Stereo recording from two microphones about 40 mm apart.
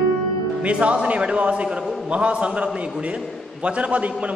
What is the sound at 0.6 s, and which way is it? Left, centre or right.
A man's voice, right.